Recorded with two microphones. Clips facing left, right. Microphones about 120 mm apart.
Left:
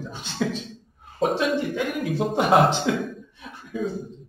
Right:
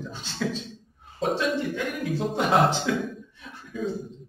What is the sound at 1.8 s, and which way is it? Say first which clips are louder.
A man's voice: left 3 dB; 15° left (ahead or behind).